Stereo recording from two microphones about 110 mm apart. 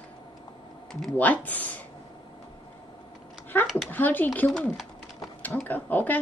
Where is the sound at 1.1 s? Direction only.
15° left (ahead or behind).